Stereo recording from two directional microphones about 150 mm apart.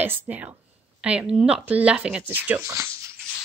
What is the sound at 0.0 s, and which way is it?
Speech, 10° right (ahead or behind).